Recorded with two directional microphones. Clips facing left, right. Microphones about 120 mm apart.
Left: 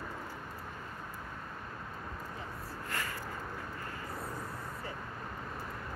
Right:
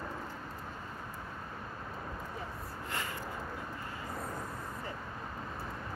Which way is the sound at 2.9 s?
20° right (ahead or behind).